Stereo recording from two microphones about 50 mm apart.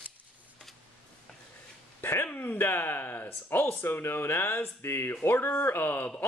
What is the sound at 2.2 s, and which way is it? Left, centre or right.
Speech, left.